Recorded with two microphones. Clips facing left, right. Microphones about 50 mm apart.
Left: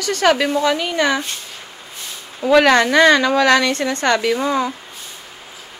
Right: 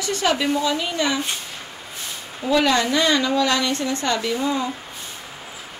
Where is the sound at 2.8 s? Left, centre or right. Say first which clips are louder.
Left 7 dB; left.